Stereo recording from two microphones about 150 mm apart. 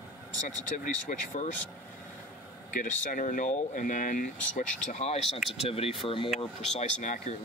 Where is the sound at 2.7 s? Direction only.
60° left (ahead or behind); by 6.3 s 35° left (ahead or behind).